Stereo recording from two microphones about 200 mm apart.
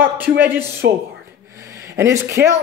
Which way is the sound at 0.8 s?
55° right (ahead or behind).